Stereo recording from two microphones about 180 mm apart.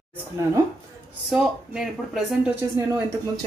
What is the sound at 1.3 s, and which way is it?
Speech, centre (ahead or behind).